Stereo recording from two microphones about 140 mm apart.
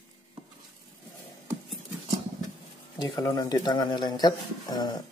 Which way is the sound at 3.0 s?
25° left (ahead or behind).